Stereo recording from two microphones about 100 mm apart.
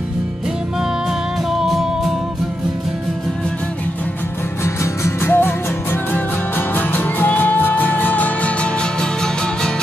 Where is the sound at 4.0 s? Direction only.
25° left (ahead or behind).